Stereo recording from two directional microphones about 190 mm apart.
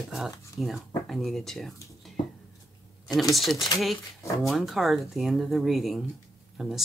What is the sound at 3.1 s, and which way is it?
Speech, centre (ahead or behind).